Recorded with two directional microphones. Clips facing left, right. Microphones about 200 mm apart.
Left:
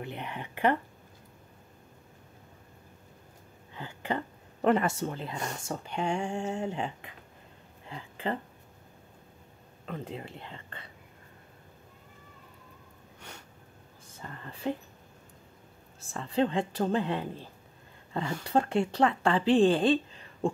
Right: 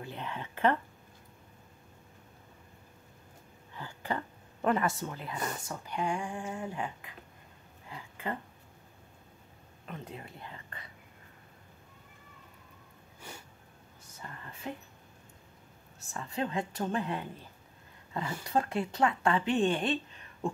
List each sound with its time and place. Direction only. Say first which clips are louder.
0.0 s speech: left 2 dB; 15° left (ahead or behind)
3.7 s a sound: left 3 dB; 20° left (ahead or behind)
4.6 s speech: left 4 dB; 30° left (ahead or behind)
9.8 s speech: left 5 dB; 30° left (ahead or behind)
14.2 s speech: left 7 dB; 30° left (ahead or behind)
16.0 s speech: left 7 dB; 30° left (ahead or behind)